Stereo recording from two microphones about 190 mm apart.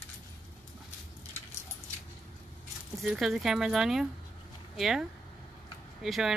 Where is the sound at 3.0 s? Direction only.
Centre (ahead or behind).